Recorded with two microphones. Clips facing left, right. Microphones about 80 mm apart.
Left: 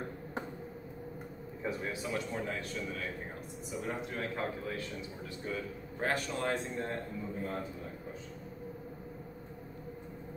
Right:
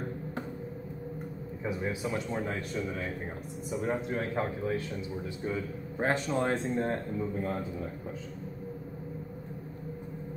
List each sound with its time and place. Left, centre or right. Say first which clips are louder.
1.6 s speech: right 4 dB; centre